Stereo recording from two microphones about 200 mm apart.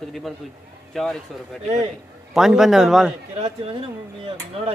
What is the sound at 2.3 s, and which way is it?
Speech, centre (ahead or behind).